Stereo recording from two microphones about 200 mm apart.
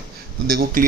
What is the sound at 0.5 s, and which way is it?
Speech, 50° right (ahead or behind).